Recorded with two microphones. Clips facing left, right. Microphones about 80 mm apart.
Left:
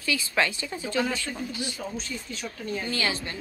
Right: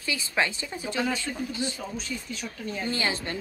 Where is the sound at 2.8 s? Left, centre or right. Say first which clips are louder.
Right 2 dB; right.